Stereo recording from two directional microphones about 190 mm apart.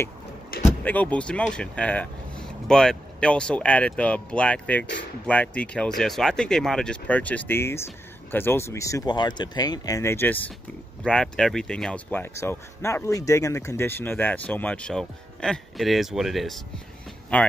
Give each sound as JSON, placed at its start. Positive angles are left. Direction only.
{"t": 0.6, "sound": "speech", "side_deg": 10}